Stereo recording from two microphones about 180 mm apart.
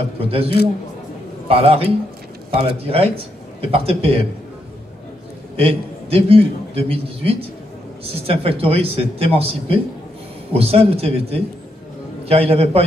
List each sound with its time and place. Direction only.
0.2 s a man's voice: 30° right (ahead or behind)
1.5 s a man's voice: 30° right (ahead or behind)
5.6 s a man's voice: 30° right (ahead or behind)